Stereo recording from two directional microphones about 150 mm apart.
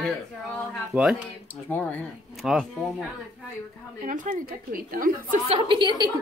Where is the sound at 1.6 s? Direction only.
10° left (ahead or behind).